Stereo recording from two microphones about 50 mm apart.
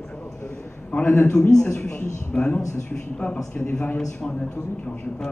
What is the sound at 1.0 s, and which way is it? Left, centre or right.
Speech, left.